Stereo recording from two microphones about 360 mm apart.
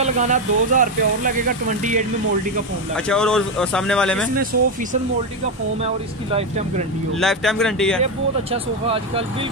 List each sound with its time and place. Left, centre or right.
0.0 s speech: right
3.1 s speech: centre
6.3 s speech: centre
7.2 s speech: centre
8.0 s speech: centre